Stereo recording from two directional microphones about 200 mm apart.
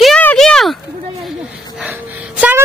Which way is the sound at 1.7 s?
5° right (ahead or behind).